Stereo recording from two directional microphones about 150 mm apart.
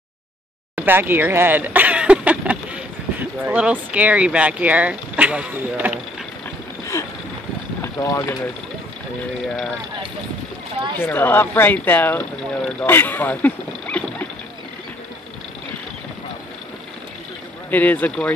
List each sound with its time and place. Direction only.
0.7 s speech: 15° right (ahead or behind)
6.9 s a sound: 20° left (ahead or behind)
7.8 s speech: 20° left (ahead or behind)
11.0 s speech: 15° left (ahead or behind)
17.6 s speech: 10° left (ahead or behind)